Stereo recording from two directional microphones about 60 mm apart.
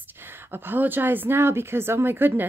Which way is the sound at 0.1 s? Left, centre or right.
Right.